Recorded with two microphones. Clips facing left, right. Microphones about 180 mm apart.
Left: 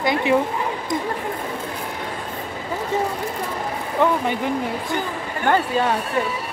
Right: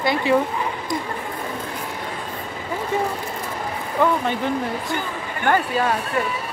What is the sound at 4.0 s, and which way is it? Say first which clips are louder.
Speech: even; 20° left (ahead or behind).